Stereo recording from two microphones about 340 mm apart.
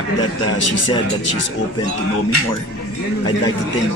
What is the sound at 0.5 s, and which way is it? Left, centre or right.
Speech, left.